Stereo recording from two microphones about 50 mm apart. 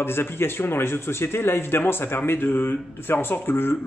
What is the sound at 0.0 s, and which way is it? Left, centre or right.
Speech, left.